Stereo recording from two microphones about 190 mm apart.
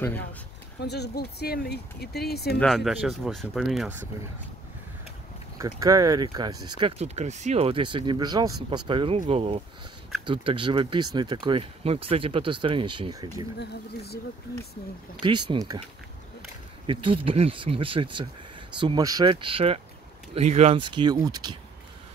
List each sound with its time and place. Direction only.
0.8 s speech: 60° left (ahead or behind)
2.6 s speech: centre (ahead or behind)
5.6 s speech: 15° right (ahead or behind)
7.0 s speech: 35° right (ahead or behind)
13.6 s speech: 55° left (ahead or behind)
15.2 s speech: 25° right (ahead or behind)
16.8 s speech: 25° right (ahead or behind)